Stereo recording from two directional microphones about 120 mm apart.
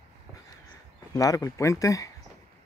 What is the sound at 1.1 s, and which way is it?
Speech, 30° left (ahead or behind).